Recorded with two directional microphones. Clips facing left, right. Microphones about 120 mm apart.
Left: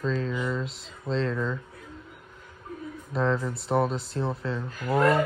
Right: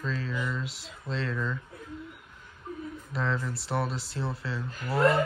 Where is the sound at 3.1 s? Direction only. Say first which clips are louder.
Left 6 dB; centre (ahead or behind).